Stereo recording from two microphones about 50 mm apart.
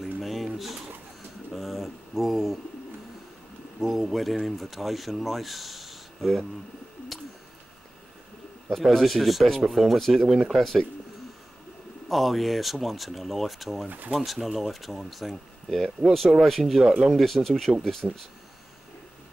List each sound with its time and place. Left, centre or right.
0.2 s boiling: centre
1.5 s pigeon: centre
3.8 s speech: centre
8.6 s speech: centre
12.1 s speech: centre
13.8 s speech: right
14.1 s speech: centre
17.2 s speech: centre
18.0 s speech: right